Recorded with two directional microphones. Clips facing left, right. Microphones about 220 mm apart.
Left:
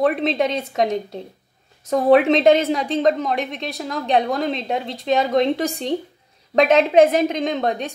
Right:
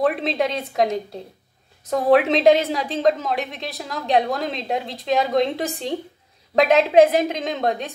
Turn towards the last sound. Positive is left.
turn(degrees=0)  # may be behind; listen again after turning